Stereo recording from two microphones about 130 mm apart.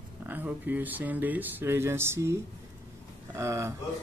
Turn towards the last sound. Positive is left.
turn(degrees=-20)  # may be behind; listen again after turning